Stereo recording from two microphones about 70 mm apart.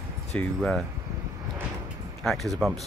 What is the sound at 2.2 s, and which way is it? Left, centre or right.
Speech, centre.